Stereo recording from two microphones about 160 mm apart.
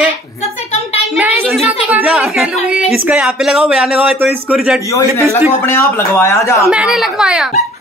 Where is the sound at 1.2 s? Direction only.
10° right (ahead or behind).